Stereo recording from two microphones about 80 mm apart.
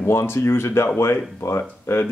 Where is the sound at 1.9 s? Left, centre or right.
Left.